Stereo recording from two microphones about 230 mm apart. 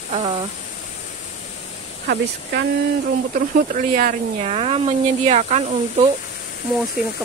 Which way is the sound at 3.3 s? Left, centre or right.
Right.